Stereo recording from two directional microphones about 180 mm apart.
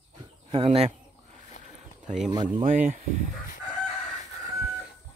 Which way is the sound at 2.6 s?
45° right (ahead or behind).